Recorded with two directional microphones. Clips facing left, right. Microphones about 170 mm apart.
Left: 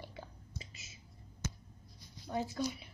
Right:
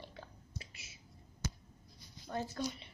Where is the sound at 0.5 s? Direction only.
65° right (ahead or behind).